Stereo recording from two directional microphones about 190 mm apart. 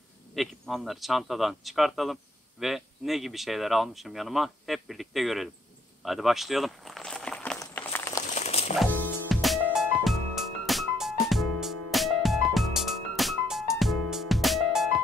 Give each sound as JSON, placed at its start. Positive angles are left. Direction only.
{"t": 0.3, "sound": "speech", "side_deg": 0}
{"t": 6.0, "sound": "walk", "side_deg": 0}
{"t": 7.5, "sound": "a sound", "side_deg": 10}
{"t": 8.2, "sound": "crumpling", "side_deg": 40}
{"t": 8.9, "sound": "music", "side_deg": 5}